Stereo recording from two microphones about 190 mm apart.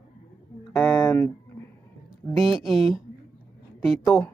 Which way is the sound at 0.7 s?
15° left (ahead or behind).